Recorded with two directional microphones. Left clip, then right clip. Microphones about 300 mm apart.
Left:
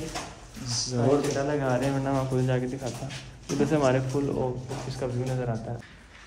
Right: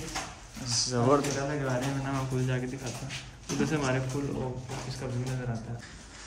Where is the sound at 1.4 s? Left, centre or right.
Centre.